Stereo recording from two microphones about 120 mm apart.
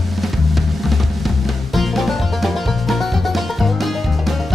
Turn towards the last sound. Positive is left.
turn(degrees=0)  # may be behind; listen again after turning